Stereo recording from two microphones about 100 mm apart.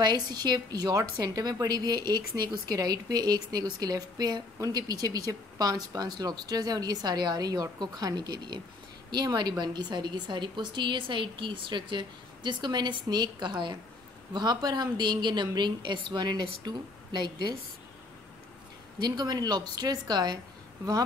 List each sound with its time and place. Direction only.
0.0 s a woman's voice: 45° right (ahead or behind)
18.9 s a woman's voice: 45° right (ahead or behind)